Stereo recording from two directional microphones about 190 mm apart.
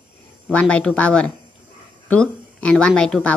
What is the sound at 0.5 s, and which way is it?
Speech, 5° left (ahead or behind).